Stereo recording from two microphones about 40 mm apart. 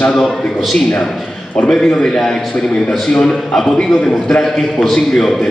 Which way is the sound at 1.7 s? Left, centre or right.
Centre.